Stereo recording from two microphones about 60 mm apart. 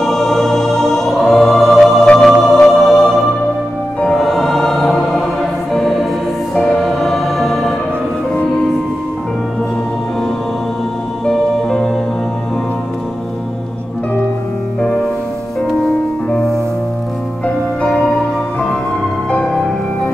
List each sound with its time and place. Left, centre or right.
0.0 s music: centre
4.0 s choir: centre
6.5 s music: centre
11.2 s music: centre
17.8 s music: centre